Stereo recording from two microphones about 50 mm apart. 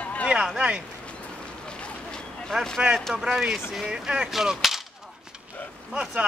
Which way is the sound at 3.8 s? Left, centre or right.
Centre.